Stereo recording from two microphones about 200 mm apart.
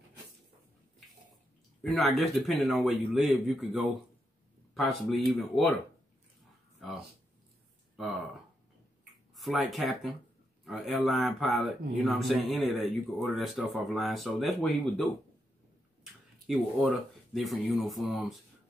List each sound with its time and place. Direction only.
1.8 s speech: centre (ahead or behind)
6.8 s speech: centre (ahead or behind)
9.3 s speech: centre (ahead or behind)
16.4 s speech: centre (ahead or behind)